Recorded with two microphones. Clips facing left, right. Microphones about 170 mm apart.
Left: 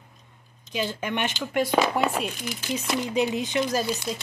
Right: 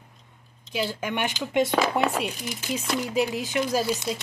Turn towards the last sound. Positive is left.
turn(degrees=-10)  # may be behind; listen again after turning